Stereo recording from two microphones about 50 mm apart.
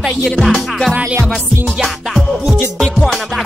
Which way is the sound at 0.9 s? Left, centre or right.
Right.